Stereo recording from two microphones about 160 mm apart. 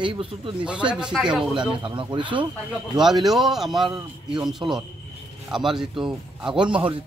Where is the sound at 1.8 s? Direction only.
30° right (ahead or behind).